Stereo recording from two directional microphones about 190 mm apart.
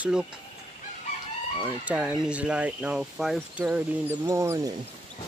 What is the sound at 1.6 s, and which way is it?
Speech, 5° right (ahead or behind).